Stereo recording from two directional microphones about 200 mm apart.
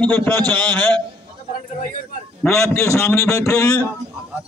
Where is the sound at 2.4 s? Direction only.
5° left (ahead or behind).